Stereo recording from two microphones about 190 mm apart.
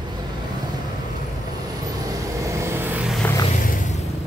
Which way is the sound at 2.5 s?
15° right (ahead or behind).